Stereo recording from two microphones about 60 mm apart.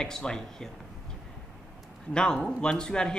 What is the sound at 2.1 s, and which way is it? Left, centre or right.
Speech, centre.